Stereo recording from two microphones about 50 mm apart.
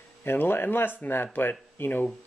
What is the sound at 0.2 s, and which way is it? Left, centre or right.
Speech, left.